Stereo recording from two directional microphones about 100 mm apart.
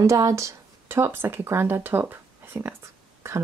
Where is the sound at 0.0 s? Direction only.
30° right (ahead or behind).